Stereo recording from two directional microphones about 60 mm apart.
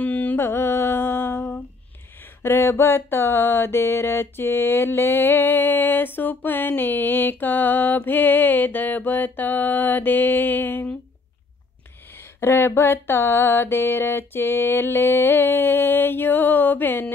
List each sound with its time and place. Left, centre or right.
0.0 s music: left
0.4 s mantra: left
12.4 s mantra: left